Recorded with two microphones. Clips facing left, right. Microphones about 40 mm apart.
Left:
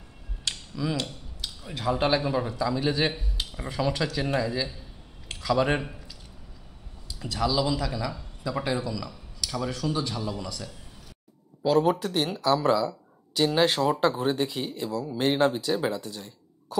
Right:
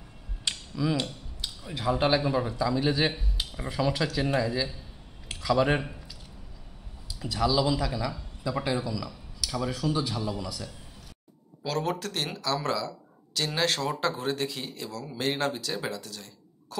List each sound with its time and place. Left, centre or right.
0.5 s speech: centre
7.2 s a man's voice: centre
11.6 s speech: centre
12.6 s a sound: centre
13.6 s speech: centre